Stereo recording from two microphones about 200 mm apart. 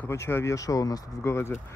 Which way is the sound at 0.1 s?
15° left (ahead or behind).